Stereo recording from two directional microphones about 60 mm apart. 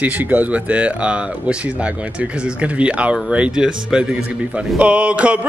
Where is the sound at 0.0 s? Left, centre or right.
Right.